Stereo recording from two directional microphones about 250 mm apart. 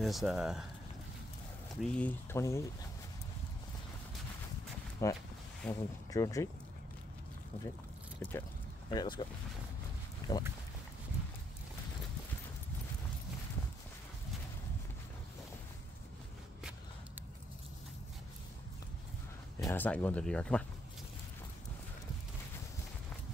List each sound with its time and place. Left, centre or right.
0.0 s speech: centre
1.8 s speech: centre
5.0 s speech: centre
8.2 s speech: centre
10.3 s speech: centre
19.6 s speech: centre